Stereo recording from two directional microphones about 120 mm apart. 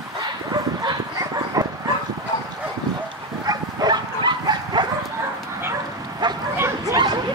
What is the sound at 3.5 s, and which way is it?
Bow-wow, 35° right (ahead or behind).